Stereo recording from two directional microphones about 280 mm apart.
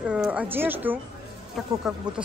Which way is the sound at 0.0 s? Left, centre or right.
Centre.